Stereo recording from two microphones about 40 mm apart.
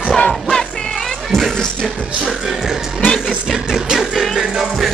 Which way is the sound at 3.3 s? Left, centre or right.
Centre.